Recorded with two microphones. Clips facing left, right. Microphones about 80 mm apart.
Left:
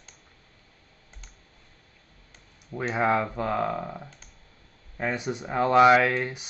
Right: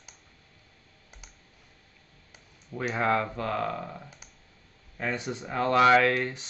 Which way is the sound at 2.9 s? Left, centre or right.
Centre.